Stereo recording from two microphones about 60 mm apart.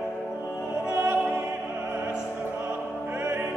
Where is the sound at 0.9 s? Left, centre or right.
Right.